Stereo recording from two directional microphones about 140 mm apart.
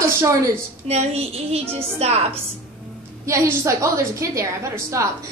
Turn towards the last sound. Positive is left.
turn(degrees=-20)  # may be behind; listen again after turning